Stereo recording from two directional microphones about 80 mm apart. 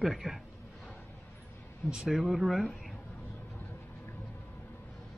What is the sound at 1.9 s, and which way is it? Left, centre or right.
Speech, centre.